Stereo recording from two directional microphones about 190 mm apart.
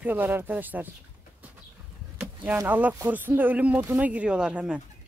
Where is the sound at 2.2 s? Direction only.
10° right (ahead or behind).